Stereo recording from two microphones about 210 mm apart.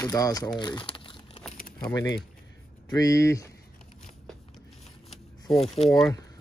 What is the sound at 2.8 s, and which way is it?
Speech, 15° left (ahead or behind).